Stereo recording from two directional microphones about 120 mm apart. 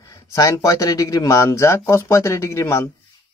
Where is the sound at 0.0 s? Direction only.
30° left (ahead or behind).